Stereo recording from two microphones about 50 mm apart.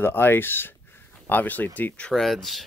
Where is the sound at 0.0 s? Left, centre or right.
Left.